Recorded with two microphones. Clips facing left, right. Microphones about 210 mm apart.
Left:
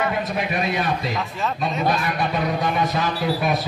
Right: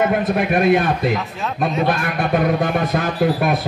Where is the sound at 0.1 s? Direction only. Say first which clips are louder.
Right 7 dB; 55° right (ahead or behind).